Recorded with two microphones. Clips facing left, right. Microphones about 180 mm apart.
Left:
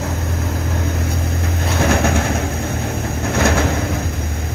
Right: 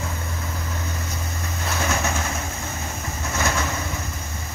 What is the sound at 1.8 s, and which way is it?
Vehicle, 60° left (ahead or behind).